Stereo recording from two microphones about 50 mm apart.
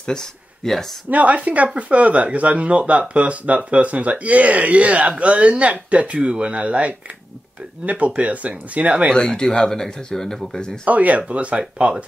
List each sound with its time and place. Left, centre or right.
0.0 s speech: centre
1.1 s speech: right
9.1 s speech: centre
10.9 s speech: right